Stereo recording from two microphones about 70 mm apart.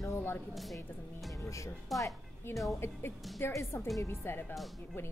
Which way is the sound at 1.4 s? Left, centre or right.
Left.